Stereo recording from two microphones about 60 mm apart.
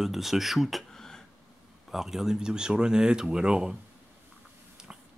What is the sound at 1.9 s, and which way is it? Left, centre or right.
Speech, centre.